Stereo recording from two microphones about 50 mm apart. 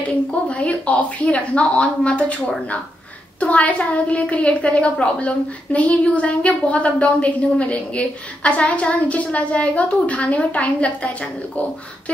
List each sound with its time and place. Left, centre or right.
0.5 s a woman's voice: left